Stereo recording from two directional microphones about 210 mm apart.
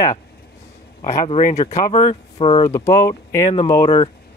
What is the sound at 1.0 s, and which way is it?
Speech, 30° left (ahead or behind).